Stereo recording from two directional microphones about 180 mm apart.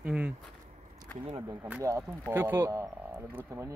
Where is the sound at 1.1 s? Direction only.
10° left (ahead or behind).